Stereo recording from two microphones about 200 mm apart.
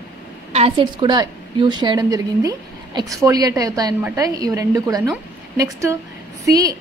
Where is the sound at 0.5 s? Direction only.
30° right (ahead or behind).